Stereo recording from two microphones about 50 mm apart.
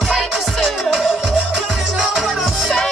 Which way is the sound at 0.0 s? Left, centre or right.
Centre.